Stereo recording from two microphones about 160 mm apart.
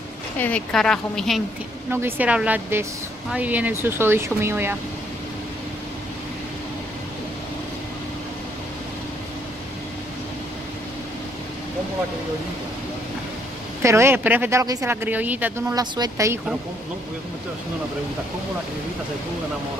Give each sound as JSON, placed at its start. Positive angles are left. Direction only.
{"t": 0.4, "sound": "a woman's voice", "side_deg": 5}
{"t": 1.9, "sound": "speech", "side_deg": -15}
{"t": 13.8, "sound": "speech", "side_deg": -15}
{"t": 15.7, "sound": "speech", "side_deg": -25}